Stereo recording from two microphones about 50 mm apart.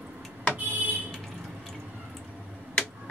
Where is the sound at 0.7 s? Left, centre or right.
Right.